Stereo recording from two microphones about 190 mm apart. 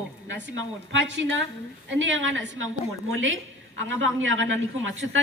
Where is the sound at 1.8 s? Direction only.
85° right.